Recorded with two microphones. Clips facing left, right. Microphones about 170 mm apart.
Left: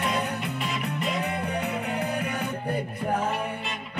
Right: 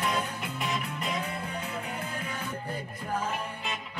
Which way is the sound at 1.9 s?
70° left (ahead or behind).